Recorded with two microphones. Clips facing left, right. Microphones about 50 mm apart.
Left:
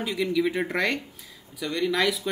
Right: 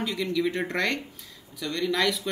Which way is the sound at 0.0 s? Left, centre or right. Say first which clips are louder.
Left 2 dB; centre.